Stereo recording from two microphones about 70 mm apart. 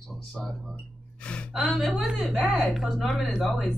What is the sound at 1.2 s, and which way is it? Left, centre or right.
Gasp, centre.